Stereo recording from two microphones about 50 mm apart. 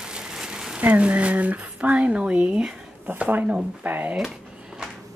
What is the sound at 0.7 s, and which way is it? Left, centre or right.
Speech, right.